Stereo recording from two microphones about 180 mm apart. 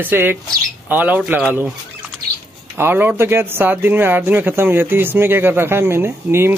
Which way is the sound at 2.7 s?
10° right (ahead or behind).